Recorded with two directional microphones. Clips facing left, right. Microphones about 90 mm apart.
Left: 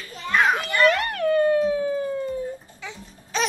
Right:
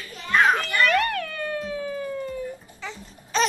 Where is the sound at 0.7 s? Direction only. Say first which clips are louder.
Left 1 dB; 20° left (ahead or behind).